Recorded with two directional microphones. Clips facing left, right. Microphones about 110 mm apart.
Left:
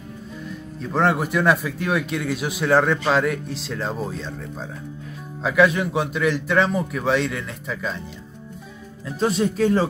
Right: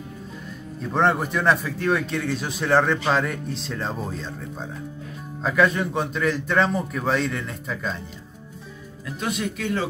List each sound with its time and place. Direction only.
0.9 s speech: 5° left (ahead or behind)
9.0 s speech: 35° left (ahead or behind)